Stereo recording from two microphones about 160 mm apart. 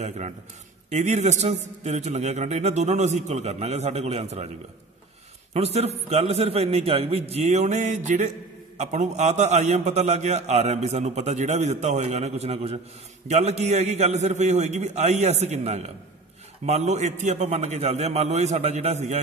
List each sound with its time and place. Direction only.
0.8 s a man's voice: 45° right (ahead or behind)
5.5 s a man's voice: 40° right (ahead or behind)